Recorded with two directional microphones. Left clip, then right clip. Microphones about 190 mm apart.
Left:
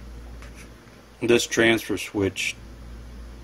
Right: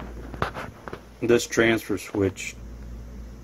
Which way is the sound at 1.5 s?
25° left (ahead or behind).